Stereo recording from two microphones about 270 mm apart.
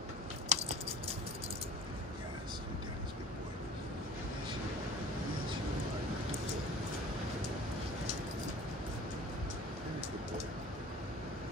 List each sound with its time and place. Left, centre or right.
0.5 s biting: right